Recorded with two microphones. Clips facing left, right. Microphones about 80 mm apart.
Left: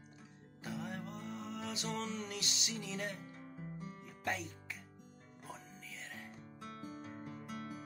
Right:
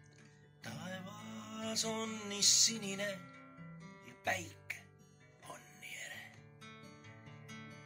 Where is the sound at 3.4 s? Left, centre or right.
Left.